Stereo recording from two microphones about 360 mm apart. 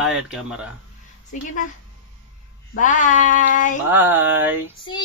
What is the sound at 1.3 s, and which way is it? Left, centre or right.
Speech, centre.